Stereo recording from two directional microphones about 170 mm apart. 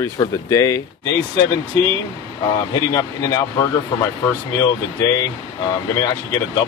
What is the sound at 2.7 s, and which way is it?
Speech, 20° left (ahead or behind).